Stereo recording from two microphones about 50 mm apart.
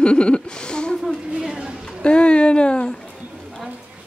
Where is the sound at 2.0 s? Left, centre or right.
Left.